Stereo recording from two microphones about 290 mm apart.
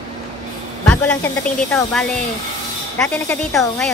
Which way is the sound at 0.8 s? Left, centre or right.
Centre.